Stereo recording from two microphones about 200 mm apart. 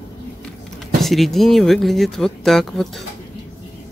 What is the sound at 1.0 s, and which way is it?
Speech, centre (ahead or behind).